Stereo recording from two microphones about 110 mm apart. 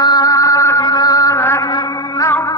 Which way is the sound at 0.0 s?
35° left (ahead or behind).